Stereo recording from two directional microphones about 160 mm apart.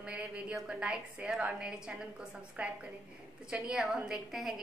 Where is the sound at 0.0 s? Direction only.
5° right (ahead or behind).